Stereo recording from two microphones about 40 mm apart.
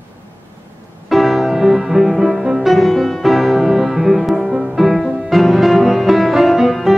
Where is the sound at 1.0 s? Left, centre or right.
Centre.